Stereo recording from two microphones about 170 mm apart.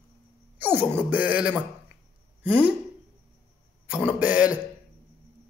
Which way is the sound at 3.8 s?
10° right (ahead or behind).